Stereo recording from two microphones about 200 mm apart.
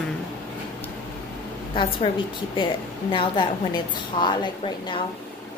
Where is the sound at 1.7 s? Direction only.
25° left (ahead or behind).